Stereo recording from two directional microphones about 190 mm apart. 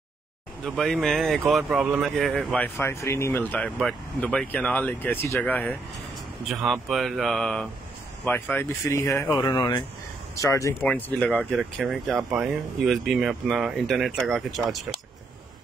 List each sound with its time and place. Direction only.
0.7 s speech: centre (ahead or behind)